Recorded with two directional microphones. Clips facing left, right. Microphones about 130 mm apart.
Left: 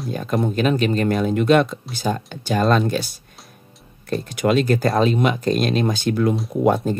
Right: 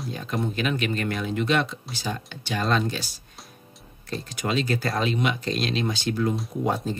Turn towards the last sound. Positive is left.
turn(degrees=60)  # may be behind; listen again after turning